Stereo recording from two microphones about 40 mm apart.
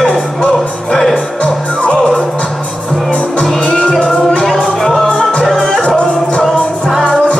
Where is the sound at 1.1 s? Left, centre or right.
Left.